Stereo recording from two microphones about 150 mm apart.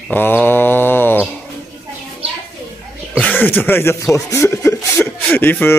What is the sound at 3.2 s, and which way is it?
Speech, 10° left (ahead or behind).